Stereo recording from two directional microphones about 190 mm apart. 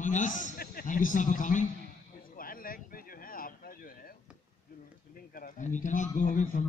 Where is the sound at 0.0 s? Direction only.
40° left (ahead or behind).